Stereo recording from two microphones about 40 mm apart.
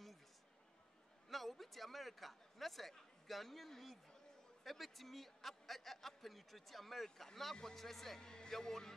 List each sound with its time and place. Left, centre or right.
1.3 s a man's voice: centre
8.2 s speech: centre